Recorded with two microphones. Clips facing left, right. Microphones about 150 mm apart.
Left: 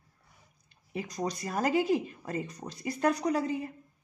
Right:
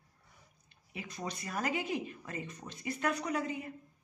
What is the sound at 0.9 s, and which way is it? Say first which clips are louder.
A woman's voice: left 7 dB; 40° left (ahead or behind).